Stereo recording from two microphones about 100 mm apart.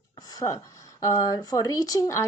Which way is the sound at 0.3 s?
35° left (ahead or behind).